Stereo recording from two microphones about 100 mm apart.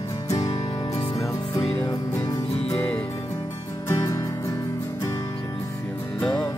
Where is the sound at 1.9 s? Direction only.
40° left (ahead or behind).